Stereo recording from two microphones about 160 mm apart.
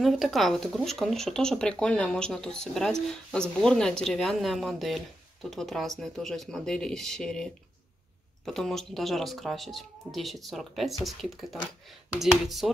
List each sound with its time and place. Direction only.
0.0 s speech: centre (ahead or behind)
8.5 s speech: centre (ahead or behind)